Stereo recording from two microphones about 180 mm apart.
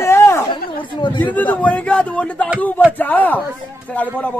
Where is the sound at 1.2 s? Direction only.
10° left (ahead or behind).